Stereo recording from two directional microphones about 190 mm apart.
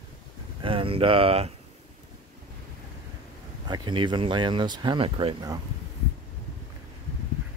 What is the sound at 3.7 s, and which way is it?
Speech, 25° right (ahead or behind).